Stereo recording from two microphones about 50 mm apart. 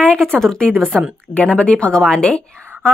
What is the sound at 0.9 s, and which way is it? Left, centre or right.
Speech, centre.